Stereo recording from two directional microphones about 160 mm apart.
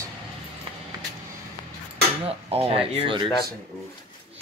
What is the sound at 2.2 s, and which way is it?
Speech, 35° right (ahead or behind).